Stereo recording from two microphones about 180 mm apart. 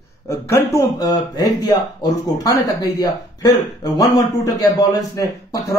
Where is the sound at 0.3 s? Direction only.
15° left (ahead or behind).